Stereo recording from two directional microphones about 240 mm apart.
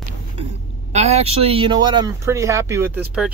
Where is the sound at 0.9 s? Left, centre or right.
Right.